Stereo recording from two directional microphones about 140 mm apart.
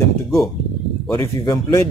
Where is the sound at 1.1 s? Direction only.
20° left (ahead or behind).